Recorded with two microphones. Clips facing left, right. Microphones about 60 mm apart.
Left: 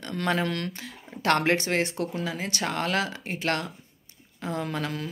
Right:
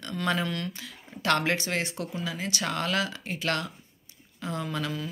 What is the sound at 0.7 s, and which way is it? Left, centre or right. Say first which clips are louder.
Speech: left 3 dB; left.